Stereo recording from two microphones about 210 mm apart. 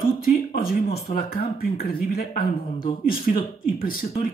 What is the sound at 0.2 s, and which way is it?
Speech, 45° left (ahead or behind).